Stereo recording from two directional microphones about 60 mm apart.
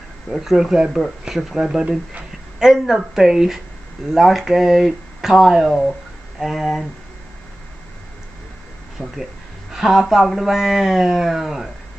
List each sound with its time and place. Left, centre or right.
0.3 s speech: centre
9.0 s speech: centre
9.7 s speech: centre